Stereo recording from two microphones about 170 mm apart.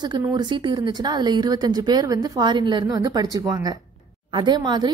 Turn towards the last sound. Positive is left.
turn(degrees=-25)  # may be behind; listen again after turning